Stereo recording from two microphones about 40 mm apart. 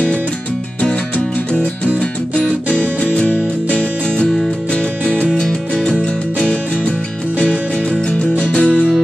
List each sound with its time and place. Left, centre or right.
2.3 s music: left
4.7 s music: left
7.9 s music: left